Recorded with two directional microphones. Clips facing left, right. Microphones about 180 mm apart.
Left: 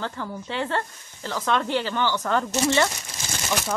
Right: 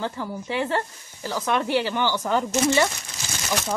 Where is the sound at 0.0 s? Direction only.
15° right (ahead or behind).